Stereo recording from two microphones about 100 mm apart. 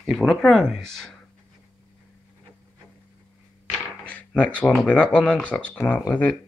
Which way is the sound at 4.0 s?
15° left (ahead or behind).